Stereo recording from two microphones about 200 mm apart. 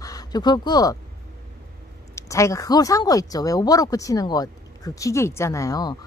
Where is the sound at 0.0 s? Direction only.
20° left (ahead or behind).